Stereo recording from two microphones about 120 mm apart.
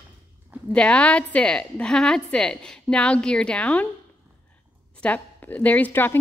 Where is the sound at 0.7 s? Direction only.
10° left (ahead or behind).